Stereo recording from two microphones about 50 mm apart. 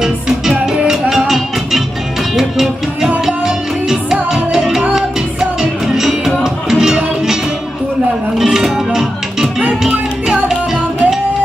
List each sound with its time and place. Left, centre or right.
0.0 s music: centre
8.4 s music: centre
9.6 s music: centre